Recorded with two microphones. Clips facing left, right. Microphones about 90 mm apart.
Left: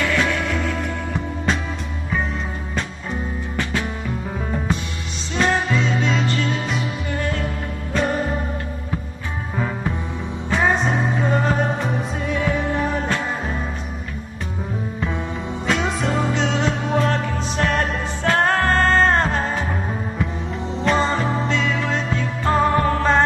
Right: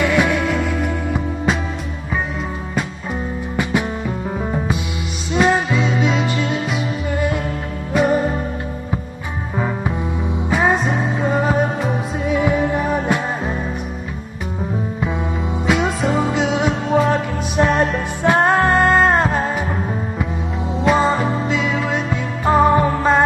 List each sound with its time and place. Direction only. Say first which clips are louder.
0.0 s music: right 4 dB; 15° right (ahead or behind)
5.3 s music: right 4 dB; 10° right (ahead or behind)
11.1 s music: right 5 dB; 5° right (ahead or behind)
15.6 s music: right 4 dB; 5° right (ahead or behind)
20.8 s music: right 4 dB; 5° right (ahead or behind)